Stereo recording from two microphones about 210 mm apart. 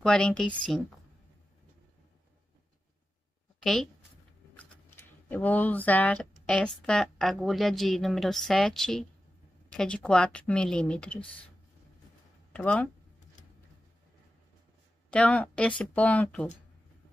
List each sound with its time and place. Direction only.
0.0 s speech: 5° left (ahead or behind)
3.5 s speech: centre (ahead or behind)
5.3 s speech: 10° left (ahead or behind)
12.5 s speech: 5° left (ahead or behind)
15.0 s speech: 5° left (ahead or behind)